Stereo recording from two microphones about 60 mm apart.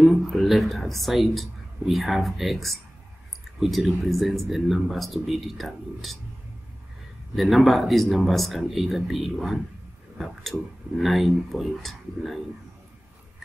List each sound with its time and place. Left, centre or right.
0.0 s a woman's voice: centre
7.3 s a woman's voice: centre